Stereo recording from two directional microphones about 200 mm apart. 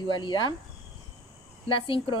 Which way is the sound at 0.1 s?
25° left (ahead or behind).